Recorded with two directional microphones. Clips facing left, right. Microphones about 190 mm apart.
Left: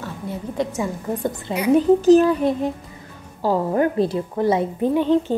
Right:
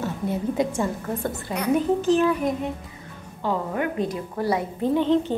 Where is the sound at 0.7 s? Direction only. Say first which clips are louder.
Left 1 dB; 15° left (ahead or behind).